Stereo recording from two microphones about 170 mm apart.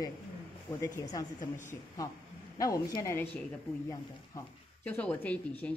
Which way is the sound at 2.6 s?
20° left (ahead or behind).